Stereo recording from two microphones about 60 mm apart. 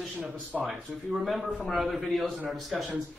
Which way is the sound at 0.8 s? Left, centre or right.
Centre.